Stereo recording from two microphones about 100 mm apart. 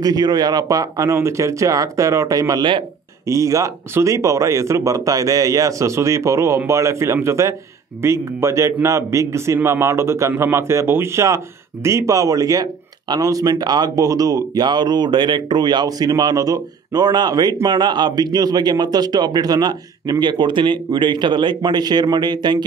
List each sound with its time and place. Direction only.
0.0 s a man's voice: 40° right (ahead or behind)